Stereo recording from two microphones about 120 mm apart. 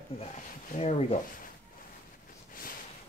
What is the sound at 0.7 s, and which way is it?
Speech, 60° left (ahead or behind).